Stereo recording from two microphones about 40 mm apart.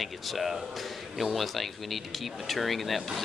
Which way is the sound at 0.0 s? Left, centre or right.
Centre.